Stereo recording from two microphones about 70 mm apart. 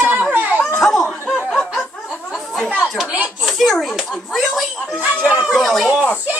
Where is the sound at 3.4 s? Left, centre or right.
Centre.